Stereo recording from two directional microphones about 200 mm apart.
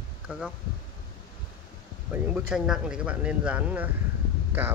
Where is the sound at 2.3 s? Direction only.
5° right (ahead or behind).